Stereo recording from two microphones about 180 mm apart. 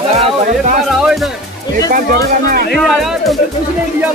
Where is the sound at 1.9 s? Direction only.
55° right (ahead or behind).